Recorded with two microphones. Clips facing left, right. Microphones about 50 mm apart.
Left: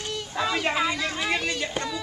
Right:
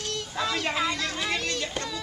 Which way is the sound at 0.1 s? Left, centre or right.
Centre.